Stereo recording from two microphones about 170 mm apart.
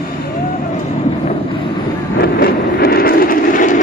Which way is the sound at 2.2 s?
65° left (ahead or behind).